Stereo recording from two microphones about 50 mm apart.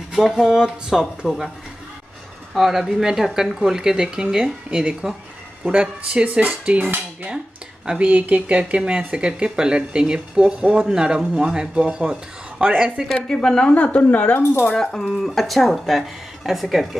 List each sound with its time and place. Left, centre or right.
0.1 s speech: centre
2.5 s speech: centre; by 6.8 s right
7.8 s speech: centre
8.1 s speech: right
13.1 s speech: centre
13.9 s a woman's voice: left
14.8 s speech: centre